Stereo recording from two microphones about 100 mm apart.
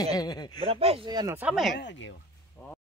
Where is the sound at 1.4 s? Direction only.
15° right (ahead or behind).